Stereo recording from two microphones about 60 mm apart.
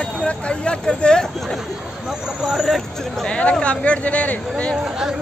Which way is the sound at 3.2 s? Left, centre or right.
Centre.